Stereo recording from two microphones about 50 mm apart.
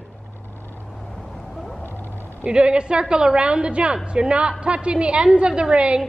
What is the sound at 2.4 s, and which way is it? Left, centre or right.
A woman's voice, centre.